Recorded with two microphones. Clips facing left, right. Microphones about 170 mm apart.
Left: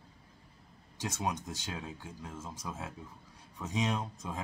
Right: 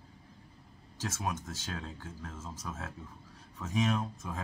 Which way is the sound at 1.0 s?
20° left (ahead or behind).